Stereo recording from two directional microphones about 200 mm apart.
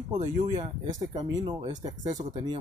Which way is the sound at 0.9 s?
20° right (ahead or behind).